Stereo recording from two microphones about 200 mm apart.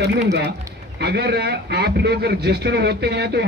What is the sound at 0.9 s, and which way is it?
A man's voice, 55° right (ahead or behind).